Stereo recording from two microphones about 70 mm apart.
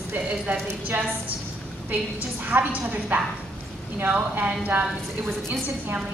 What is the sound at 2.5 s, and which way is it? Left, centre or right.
A woman's voice, right.